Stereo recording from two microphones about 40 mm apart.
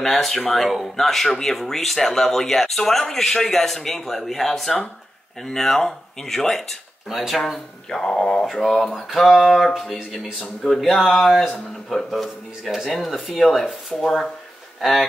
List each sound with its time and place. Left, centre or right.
0.0 s speech: centre
7.9 s speech: centre
8.5 s speech: centre
10.7 s speech: centre